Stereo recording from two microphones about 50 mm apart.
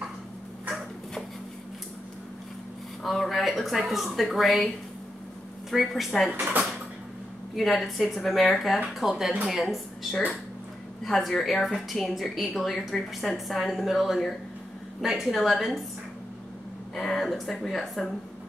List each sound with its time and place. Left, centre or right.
3.0 s a woman's voice: centre
5.7 s a woman's voice: centre
7.5 s a woman's voice: centre
11.1 s a woman's voice: centre
16.9 s speech: centre